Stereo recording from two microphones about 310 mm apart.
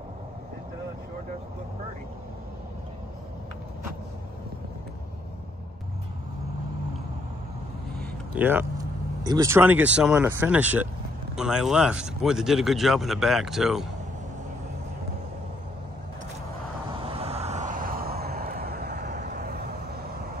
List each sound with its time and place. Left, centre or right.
8.0 s speech: centre
16.9 s vehicle: centre